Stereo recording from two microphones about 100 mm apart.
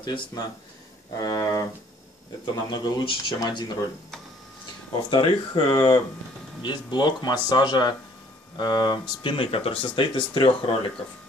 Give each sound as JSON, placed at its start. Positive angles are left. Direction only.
{"t": 0.0, "sound": "speech", "side_deg": 45}
{"t": 1.1, "sound": "a sound", "side_deg": 35}
{"t": 2.4, "sound": "speech", "side_deg": 45}
{"t": 5.1, "sound": "speech", "side_deg": 55}